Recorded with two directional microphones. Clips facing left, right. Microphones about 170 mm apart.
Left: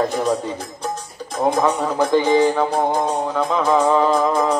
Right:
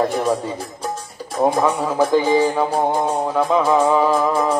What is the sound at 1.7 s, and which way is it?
Music, 10° right (ahead or behind).